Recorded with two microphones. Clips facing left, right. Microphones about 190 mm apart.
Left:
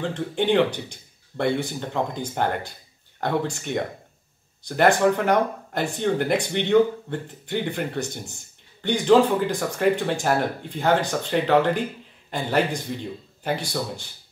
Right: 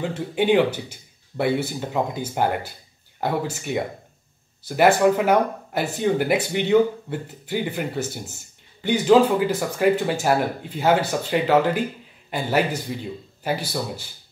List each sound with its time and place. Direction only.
0.0 s speech: 10° right (ahead or behind)